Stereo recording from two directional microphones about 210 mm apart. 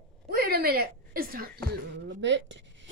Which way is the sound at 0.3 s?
45° right (ahead or behind).